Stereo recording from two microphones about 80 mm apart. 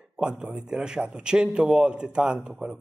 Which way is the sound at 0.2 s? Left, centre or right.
Centre.